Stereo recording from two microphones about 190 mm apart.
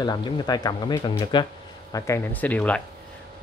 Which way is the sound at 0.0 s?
20° left (ahead or behind).